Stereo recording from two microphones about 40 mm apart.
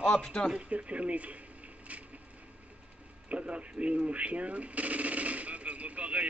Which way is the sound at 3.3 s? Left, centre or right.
Right.